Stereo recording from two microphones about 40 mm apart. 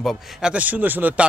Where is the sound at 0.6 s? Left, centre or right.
Right.